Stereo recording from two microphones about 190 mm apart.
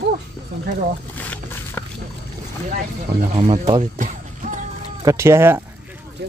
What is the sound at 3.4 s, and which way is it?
Speech, 30° right (ahead or behind).